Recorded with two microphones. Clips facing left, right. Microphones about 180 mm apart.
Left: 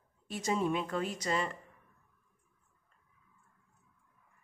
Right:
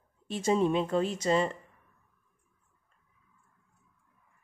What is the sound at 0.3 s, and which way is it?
A woman's voice, 30° right (ahead or behind).